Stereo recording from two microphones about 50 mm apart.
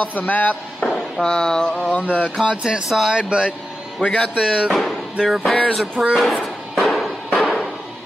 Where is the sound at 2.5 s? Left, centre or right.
Centre.